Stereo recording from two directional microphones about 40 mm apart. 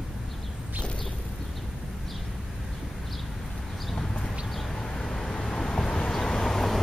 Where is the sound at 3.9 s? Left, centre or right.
Centre.